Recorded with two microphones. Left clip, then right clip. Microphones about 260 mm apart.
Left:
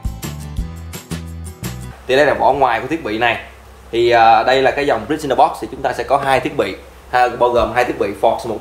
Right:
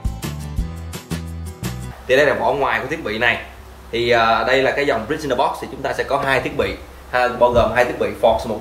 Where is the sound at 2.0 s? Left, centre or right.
Left.